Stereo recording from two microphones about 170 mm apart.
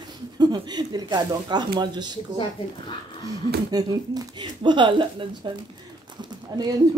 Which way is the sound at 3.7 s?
25° right (ahead or behind).